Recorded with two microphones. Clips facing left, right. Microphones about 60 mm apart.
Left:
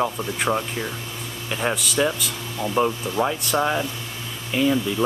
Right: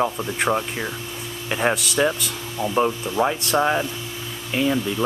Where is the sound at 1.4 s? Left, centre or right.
Right.